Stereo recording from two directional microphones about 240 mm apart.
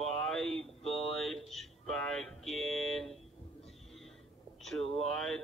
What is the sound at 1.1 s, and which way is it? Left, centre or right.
A man's voice, centre.